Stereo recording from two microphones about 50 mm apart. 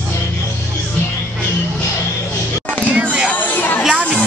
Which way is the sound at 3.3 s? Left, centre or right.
Left.